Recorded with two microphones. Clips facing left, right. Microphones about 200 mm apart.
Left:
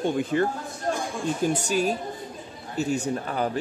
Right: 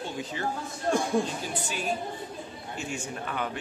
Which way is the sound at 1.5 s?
45° left (ahead or behind).